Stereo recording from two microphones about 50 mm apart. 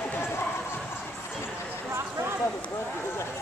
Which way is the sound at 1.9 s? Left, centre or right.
Right.